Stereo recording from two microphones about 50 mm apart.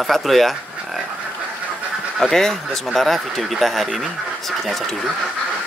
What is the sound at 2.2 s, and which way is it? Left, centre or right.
Speech, centre.